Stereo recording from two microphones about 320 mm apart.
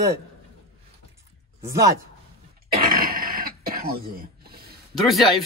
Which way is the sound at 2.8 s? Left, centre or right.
Right.